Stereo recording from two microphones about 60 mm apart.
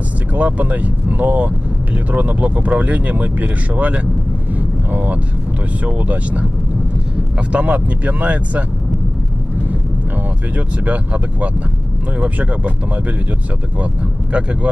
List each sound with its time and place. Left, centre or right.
0.3 s speech: right
4.6 s vehicle: right
5.9 s speech: right
12.2 s speech: right
14.3 s speech: centre